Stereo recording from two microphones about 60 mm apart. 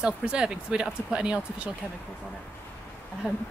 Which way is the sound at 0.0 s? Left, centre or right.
Centre.